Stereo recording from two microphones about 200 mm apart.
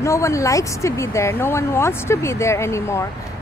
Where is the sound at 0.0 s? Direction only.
15° left (ahead or behind).